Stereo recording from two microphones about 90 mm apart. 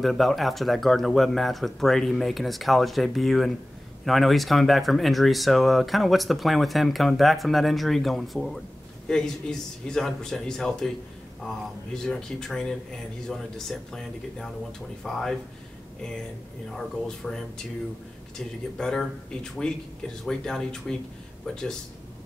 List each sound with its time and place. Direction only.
0.0 s speech: centre (ahead or behind)
16.7 s speech: 5° left (ahead or behind)
18.8 s speech: 5° left (ahead or behind)